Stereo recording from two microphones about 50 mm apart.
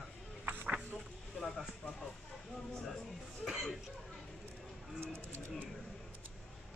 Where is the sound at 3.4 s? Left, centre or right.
Centre.